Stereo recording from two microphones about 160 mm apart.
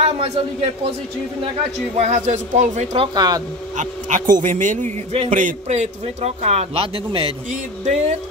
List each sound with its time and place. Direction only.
0.0 s a man's voice: 40° right (ahead or behind)
2.0 s a man's voice: 45° right (ahead or behind)
3.2 s speech: 25° right (ahead or behind)
3.7 s a man's voice: 50° right (ahead or behind)